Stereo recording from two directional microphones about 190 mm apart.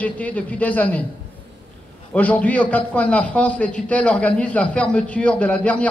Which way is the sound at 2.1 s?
10° left (ahead or behind).